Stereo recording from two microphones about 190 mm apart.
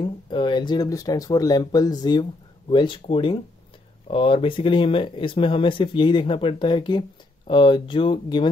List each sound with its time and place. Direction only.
0.0 s speech: 25° left (ahead or behind)